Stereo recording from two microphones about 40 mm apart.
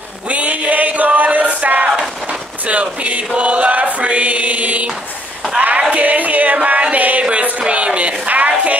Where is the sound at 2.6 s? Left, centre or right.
Right.